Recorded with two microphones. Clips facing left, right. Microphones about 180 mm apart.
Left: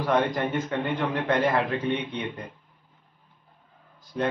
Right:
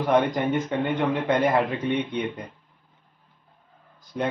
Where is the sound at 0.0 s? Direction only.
20° right (ahead or behind).